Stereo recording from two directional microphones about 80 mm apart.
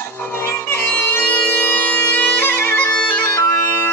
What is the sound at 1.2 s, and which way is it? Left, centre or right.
Bagpipes, centre.